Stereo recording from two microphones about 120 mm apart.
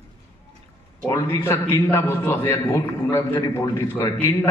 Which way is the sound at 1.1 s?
20° left (ahead or behind).